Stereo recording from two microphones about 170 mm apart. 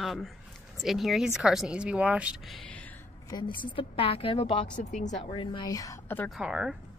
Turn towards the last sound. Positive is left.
turn(degrees=-5)  # may be behind; listen again after turning